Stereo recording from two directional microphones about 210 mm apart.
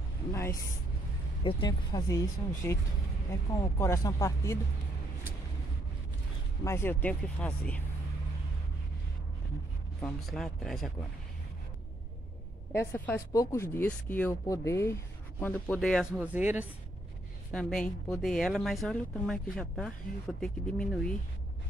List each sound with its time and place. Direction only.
0.3 s a sound: 15° left (ahead or behind)
1.4 s speech: 25° left (ahead or behind)
6.6 s speech: 10° left (ahead or behind)
10.0 s speech: centre (ahead or behind)
12.7 s speech: 10° left (ahead or behind)
16.2 s speech: 5° right (ahead or behind)
17.5 s speech: 5° left (ahead or behind)